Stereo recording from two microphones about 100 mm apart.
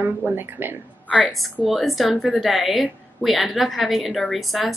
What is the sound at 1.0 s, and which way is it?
Speech, 15° left (ahead or behind).